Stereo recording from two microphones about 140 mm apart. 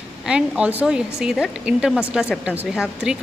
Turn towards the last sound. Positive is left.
turn(degrees=-5)  # may be behind; listen again after turning